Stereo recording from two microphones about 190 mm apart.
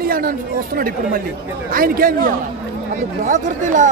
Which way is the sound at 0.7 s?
50° right (ahead or behind).